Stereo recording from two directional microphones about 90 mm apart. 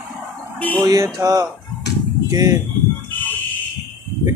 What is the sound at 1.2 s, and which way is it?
Speech, 40° right (ahead or behind).